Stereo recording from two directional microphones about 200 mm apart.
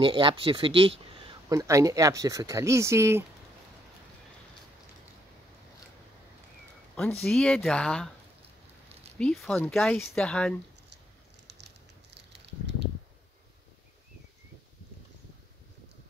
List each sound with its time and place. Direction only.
0.0 s speech: 25° right (ahead or behind)
7.2 s speech: 5° left (ahead or behind)
9.2 s speech: centre (ahead or behind)
11.4 s a sound: 60° right (ahead or behind)